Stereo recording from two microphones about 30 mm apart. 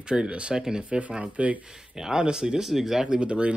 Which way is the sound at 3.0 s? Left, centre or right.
Right.